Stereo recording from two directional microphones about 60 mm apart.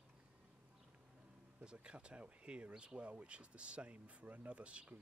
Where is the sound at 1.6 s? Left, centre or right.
Centre.